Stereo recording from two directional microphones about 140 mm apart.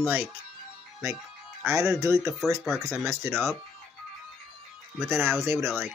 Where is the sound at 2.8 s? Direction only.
20° right (ahead or behind).